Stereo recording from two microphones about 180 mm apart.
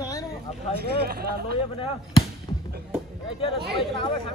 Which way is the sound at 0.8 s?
60° right (ahead or behind).